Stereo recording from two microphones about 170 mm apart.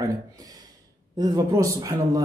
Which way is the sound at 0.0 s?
20° right (ahead or behind).